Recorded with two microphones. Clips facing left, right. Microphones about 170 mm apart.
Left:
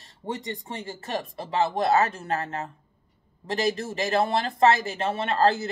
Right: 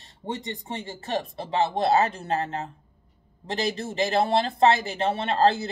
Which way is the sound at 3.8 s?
25° right (ahead or behind).